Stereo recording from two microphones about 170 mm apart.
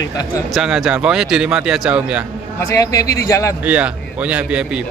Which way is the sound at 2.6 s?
20° left (ahead or behind).